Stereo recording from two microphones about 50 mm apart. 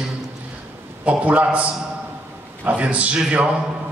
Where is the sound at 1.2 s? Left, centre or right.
Right.